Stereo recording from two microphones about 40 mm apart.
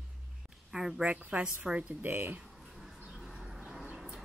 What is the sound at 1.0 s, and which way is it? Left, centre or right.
Speech, right.